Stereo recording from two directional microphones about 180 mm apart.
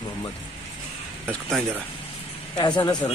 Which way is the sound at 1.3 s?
Centre (ahead or behind).